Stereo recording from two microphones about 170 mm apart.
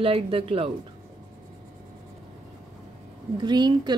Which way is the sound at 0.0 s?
35° right (ahead or behind).